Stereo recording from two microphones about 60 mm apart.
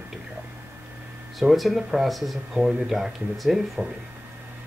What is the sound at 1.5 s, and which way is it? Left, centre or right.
Speech, centre.